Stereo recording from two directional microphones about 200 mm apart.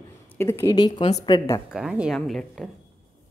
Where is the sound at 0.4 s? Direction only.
15° left (ahead or behind).